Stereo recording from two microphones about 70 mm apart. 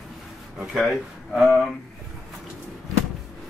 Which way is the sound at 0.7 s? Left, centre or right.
Centre.